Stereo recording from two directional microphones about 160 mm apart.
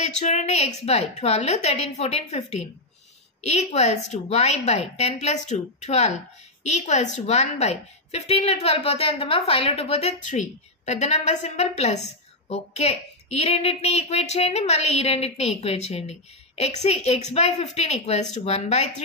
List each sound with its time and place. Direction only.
0.0 s a woman's voice: 45° left (ahead or behind)